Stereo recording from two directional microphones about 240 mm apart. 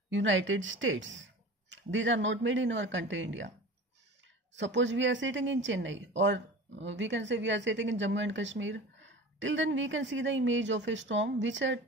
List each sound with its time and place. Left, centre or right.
0.1 s speech: right
4.6 s speech: right